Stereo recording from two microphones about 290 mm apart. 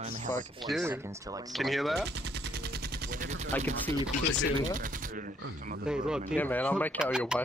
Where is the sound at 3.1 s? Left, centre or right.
Right.